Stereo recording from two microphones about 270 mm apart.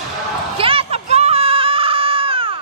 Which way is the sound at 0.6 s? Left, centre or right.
Right.